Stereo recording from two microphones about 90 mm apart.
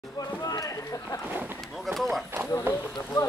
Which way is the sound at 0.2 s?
45° left (ahead or behind).